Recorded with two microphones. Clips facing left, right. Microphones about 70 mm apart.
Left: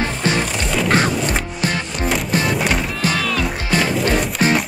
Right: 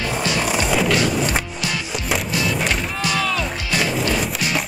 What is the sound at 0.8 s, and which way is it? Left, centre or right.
Wood, left.